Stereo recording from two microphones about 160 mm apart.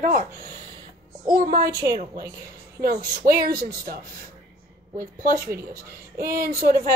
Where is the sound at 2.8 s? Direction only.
70° right (ahead or behind).